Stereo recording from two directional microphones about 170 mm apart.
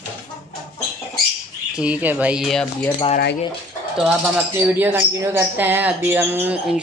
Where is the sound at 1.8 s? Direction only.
10° right (ahead or behind).